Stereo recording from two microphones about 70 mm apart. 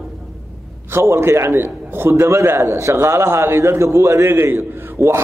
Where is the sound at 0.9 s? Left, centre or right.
Right.